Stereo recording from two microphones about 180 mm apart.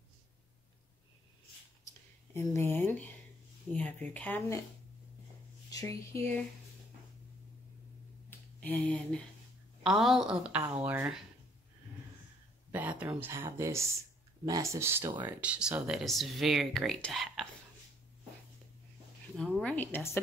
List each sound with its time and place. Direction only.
2.3 s speech: 15° left (ahead or behind)
5.7 s speech: 20° left (ahead or behind)
8.3 s a sound: 10° left (ahead or behind)
9.8 s speech: centre (ahead or behind)
12.7 s speech: 10° right (ahead or behind)
19.3 s speech: 5° left (ahead or behind)